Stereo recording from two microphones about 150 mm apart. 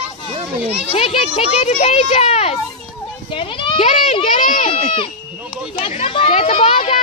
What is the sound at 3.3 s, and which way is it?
Speech, 35° left (ahead or behind).